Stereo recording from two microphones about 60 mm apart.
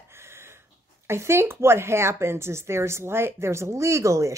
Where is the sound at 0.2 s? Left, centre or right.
Right.